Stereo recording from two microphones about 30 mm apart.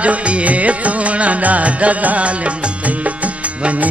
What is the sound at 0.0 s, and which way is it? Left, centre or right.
Music, right.